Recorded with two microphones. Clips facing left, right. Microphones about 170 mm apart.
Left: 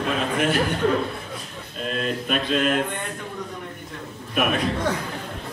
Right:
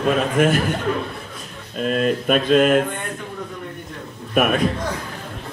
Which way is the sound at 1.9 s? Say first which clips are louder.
Right 7 dB; 50° right (ahead or behind).